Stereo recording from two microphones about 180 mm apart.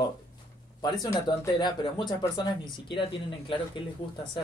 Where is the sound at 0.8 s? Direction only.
20° left (ahead or behind).